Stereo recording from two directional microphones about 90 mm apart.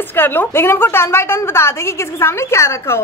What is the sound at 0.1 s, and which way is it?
A woman's voice, 20° left (ahead or behind).